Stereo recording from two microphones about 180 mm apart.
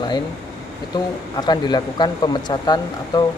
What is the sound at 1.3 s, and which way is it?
Speech, 25° left (ahead or behind).